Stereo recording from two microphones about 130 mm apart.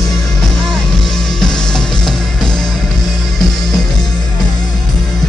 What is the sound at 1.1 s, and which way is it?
Music, 5° left (ahead or behind).